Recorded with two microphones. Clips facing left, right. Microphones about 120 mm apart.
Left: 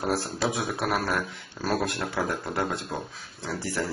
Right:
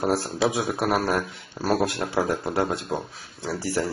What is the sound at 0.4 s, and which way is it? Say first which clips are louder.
Speech: right 4 dB; 15° right (ahead or behind).